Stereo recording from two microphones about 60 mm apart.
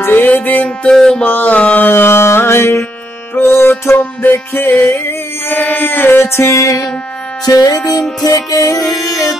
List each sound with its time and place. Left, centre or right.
0.0 s music: left
0.8 s music: centre
1.2 s music: left
3.9 s music: left
7.4 s music: left